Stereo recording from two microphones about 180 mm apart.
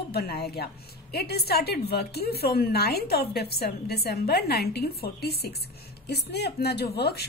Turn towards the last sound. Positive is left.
turn(degrees=65)  # may be behind; listen again after turning